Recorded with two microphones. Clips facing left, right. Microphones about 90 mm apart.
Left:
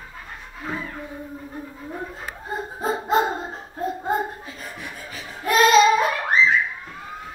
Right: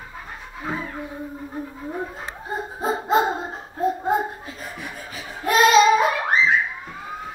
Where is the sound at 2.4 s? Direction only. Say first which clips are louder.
Right 1 dB; 5° right (ahead or behind).